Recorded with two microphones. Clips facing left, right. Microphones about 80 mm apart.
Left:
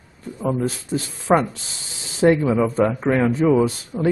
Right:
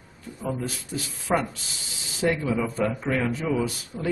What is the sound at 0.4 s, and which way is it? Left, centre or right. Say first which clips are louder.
Speech: left 8 dB; left.